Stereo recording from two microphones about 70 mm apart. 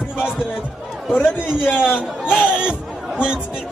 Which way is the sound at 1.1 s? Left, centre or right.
Left.